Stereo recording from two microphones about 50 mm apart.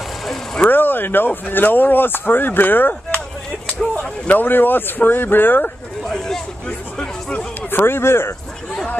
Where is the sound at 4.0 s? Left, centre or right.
Left.